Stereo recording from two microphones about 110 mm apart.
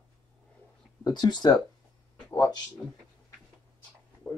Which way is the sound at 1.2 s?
40° left (ahead or behind).